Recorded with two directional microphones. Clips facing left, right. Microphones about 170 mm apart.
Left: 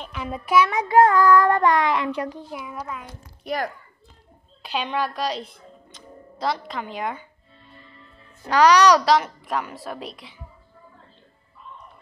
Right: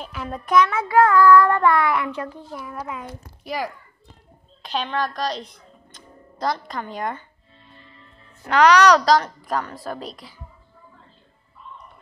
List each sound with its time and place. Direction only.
0.0 s a woman's voice: centre (ahead or behind)
0.7 s child singing: 20° left (ahead or behind)
2.1 s a child's voice: 15° left (ahead or behind)
2.6 s a woman's voice: centre (ahead or behind)
4.6 s speech: 10° left (ahead or behind)
8.5 s a woman's voice: 10° left (ahead or behind)